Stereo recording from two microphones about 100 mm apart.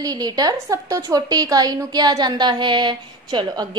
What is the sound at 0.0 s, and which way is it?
A woman's voice, 40° right (ahead or behind).